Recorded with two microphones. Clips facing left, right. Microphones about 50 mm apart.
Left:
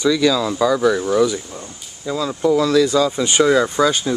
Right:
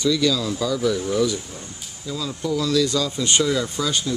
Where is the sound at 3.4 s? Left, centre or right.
Left.